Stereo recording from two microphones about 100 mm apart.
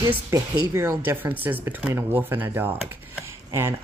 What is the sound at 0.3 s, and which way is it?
Speech, 30° right (ahead or behind).